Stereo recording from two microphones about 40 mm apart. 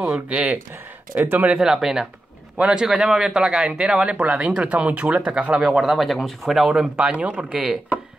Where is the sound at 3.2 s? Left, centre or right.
Right.